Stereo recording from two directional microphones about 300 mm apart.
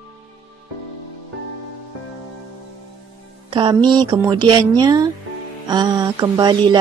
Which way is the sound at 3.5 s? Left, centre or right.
Centre.